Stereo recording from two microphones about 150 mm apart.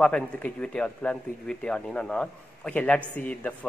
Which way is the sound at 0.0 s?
10° left (ahead or behind).